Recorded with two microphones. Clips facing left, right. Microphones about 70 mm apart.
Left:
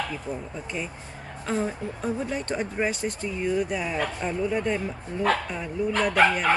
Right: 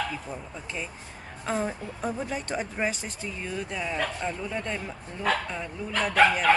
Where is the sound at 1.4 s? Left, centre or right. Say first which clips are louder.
Left 2 dB; centre.